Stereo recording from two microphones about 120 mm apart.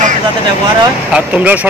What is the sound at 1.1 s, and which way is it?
Speech, 10° right (ahead or behind).